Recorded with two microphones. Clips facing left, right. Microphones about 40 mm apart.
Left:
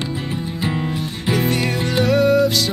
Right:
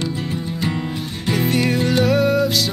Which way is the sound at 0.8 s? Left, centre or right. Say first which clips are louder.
Left 2 dB; centre.